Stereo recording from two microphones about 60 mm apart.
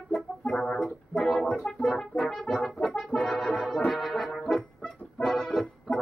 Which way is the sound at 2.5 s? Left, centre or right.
Left.